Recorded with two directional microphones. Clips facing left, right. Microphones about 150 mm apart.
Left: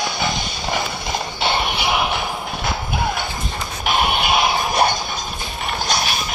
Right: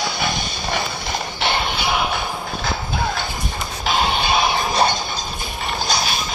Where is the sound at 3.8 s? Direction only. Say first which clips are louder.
Left 1 dB; 15° left (ahead or behind).